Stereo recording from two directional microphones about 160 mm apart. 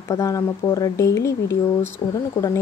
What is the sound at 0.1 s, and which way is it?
Speech, 20° left (ahead or behind).